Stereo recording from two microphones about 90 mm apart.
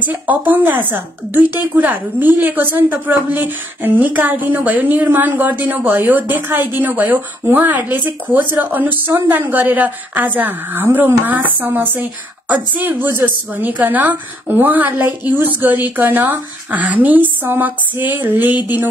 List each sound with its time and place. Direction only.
0.0 s a woman's voice: 20° right (ahead or behind)